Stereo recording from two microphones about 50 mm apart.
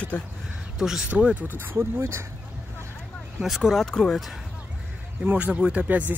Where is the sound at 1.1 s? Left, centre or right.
Right.